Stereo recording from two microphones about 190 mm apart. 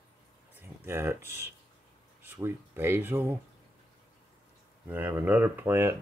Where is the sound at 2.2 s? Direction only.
10° right (ahead or behind).